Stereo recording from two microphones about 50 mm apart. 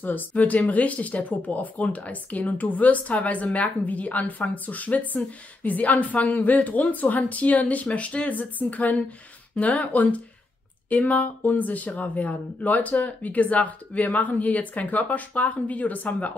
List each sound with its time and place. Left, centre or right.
0.4 s speech: left